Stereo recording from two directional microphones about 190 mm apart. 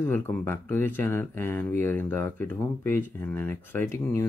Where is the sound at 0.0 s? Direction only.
10° left (ahead or behind).